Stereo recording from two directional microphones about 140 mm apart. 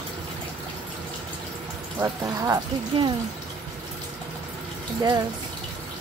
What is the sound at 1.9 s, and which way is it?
Speech, 20° right (ahead or behind).